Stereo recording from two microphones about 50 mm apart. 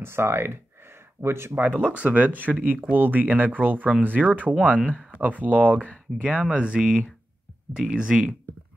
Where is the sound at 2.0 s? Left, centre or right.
Right.